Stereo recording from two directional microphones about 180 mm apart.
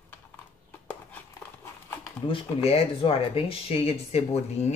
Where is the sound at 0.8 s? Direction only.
10° left (ahead or behind).